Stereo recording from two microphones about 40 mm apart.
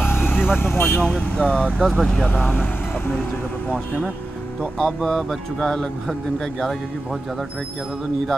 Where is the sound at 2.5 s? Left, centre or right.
Left.